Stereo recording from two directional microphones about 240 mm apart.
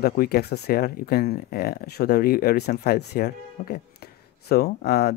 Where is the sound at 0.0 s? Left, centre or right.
Left.